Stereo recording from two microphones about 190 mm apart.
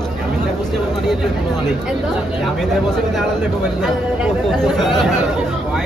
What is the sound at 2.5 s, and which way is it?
Speech, centre (ahead or behind).